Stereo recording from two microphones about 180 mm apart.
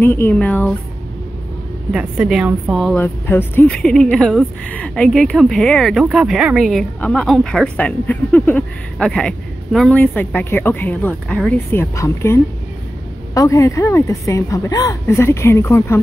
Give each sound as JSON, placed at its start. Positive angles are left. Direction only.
{"t": 0.0, "sound": "a woman's voice", "side_deg": 10}
{"t": 1.9, "sound": "speech", "side_deg": -5}
{"t": 3.0, "sound": "a woman's voice", "side_deg": 10}